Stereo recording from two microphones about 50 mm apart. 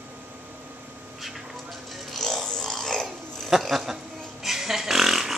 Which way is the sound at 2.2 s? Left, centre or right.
Centre.